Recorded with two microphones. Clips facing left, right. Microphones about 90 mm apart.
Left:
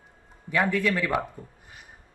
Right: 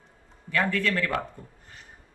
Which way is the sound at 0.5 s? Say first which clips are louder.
Left 2 dB; 15° left (ahead or behind).